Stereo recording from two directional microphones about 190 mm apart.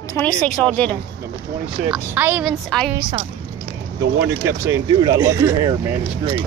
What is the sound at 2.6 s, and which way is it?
Speech, 5° left (ahead or behind).